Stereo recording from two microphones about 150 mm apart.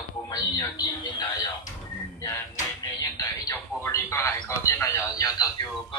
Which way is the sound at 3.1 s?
20° left (ahead or behind).